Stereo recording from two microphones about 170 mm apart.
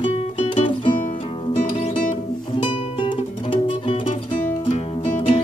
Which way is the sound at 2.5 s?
30° left (ahead or behind).